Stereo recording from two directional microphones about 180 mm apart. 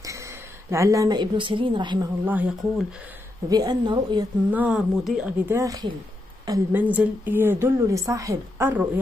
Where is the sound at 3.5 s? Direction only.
20° right (ahead or behind).